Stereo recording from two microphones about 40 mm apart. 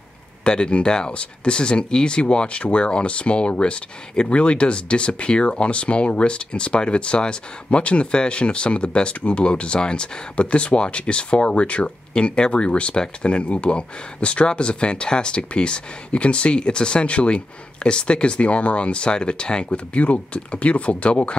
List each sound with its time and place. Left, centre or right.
0.4 s speech: left
12.1 s speech: left